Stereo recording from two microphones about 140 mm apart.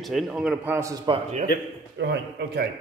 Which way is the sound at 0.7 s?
20° right (ahead or behind).